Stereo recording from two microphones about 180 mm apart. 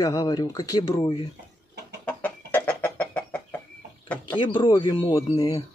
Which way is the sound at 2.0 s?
10° left (ahead or behind).